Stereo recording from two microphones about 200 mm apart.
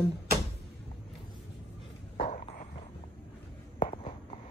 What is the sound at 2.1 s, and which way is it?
Walk, 30° left (ahead or behind).